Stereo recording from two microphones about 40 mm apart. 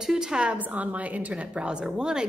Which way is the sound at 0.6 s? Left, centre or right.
Right.